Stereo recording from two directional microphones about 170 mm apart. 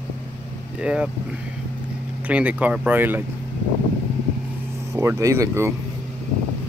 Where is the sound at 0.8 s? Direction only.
5° right (ahead or behind).